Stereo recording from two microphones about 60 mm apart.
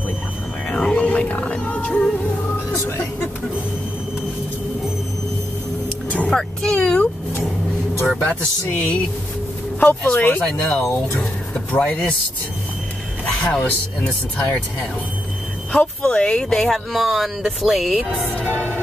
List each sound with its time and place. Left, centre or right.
0.7 s music: centre
6.0 s vehicle: left
8.6 s speech: left
10.4 s speech: centre
13.2 s music: centre
13.7 s speech: left
15.7 s speech: centre